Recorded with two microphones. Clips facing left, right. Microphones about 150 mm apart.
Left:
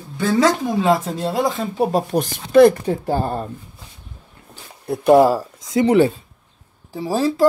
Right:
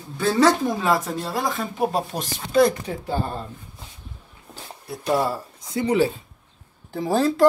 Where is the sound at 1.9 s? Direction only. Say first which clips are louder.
Left 7 dB; 55° left (ahead or behind).